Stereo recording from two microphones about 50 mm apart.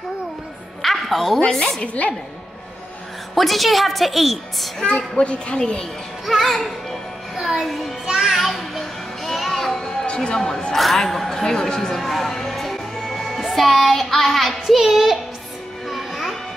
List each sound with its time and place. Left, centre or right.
0.8 s a sound: centre
1.5 s a woman's voice: centre
1.8 s a child's voice: left
3.3 s a woman's voice: centre
4.8 s a child's voice: left
6.2 s speech: centre
7.3 s music: centre
10.0 s speech: centre
10.7 s speech: centre
12.0 s music: centre